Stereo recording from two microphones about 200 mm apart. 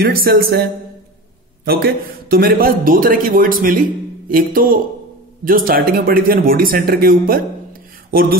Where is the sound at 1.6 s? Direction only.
50° right (ahead or behind).